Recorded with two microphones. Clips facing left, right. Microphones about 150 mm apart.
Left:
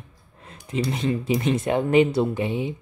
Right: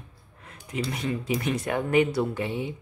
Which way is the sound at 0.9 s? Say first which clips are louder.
Left 5 dB; 25° left (ahead or behind).